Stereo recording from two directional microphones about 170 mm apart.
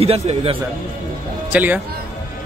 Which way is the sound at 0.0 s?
35° right (ahead or behind).